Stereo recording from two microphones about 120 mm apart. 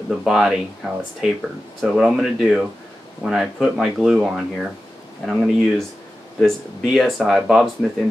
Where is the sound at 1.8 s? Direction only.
5° right (ahead or behind).